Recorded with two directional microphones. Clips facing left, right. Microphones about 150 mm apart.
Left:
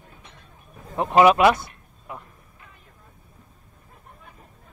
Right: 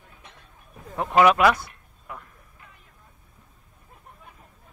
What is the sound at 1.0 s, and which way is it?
Speech, 25° left (ahead or behind).